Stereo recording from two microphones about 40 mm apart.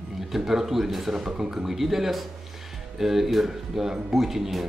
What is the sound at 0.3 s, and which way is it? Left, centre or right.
Speech, centre.